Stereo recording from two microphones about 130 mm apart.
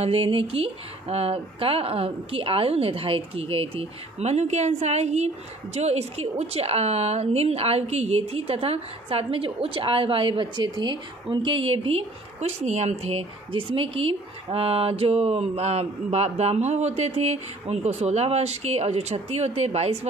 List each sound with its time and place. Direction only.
0.0 s a woman's voice: 45° right (ahead or behind)